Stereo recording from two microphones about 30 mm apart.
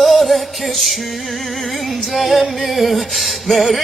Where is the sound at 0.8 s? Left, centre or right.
Centre.